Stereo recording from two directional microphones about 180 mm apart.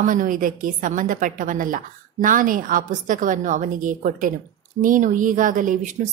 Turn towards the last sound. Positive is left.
turn(degrees=-45)  # may be behind; listen again after turning